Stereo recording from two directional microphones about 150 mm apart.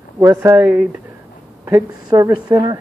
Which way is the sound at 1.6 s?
25° right (ahead or behind).